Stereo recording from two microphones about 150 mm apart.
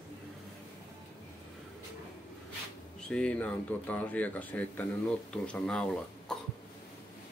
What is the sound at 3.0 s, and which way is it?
Speech, 5° left (ahead or behind).